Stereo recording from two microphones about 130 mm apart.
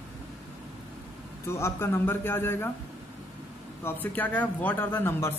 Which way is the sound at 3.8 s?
15° left (ahead or behind).